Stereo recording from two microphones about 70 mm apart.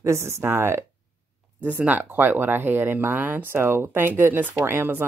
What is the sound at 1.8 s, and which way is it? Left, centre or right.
Speech, right.